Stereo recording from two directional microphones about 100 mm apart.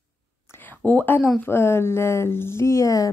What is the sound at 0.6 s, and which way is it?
A woman's voice, 15° left (ahead or behind).